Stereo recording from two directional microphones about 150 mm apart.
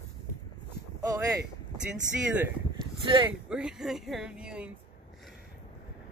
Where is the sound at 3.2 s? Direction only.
5° right (ahead or behind).